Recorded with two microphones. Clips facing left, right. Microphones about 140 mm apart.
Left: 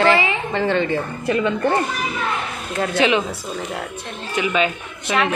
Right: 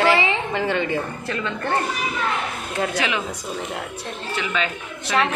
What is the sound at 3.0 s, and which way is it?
Speech, 20° left (ahead or behind).